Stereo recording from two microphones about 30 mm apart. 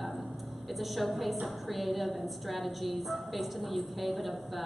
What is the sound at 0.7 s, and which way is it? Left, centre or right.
A woman's voice, centre.